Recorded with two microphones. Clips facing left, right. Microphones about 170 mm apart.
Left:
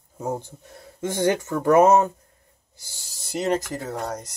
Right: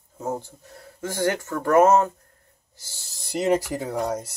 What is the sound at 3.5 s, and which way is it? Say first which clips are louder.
Speech: right 4 dB; 10° right (ahead or behind).